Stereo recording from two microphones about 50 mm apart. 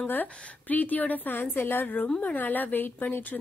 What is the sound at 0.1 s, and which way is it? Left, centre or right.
Speech, left.